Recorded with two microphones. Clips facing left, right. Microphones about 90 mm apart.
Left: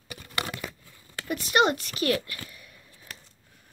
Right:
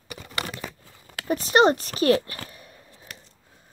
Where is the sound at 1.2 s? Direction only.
35° right (ahead or behind).